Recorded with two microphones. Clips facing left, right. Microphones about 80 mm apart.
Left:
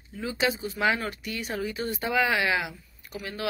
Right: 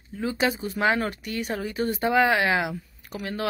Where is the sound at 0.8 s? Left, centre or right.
Right.